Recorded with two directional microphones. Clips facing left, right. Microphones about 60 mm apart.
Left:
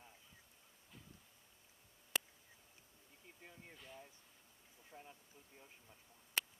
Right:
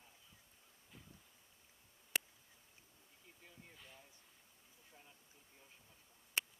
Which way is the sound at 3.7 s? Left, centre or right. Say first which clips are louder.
Left 4 dB; centre.